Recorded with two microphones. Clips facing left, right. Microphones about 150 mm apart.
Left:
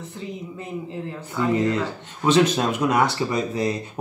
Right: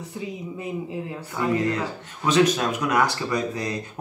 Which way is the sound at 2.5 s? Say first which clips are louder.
Left 2 dB; 25° left (ahead or behind).